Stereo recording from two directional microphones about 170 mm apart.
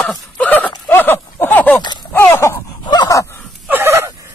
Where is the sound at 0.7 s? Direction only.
15° left (ahead or behind).